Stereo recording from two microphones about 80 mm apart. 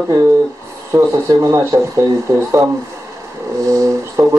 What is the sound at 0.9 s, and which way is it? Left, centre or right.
Speech, right.